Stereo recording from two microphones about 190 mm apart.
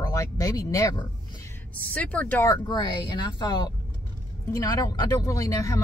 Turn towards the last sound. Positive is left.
turn(degrees=15)  # may be behind; listen again after turning